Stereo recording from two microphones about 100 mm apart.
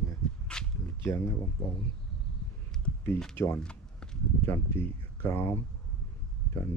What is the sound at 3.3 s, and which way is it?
Speech, 25° left (ahead or behind).